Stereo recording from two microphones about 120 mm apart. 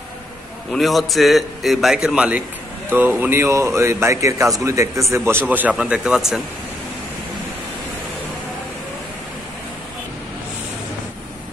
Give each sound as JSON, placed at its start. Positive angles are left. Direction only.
{"t": 0.7, "sound": "a man's voice", "side_deg": 0}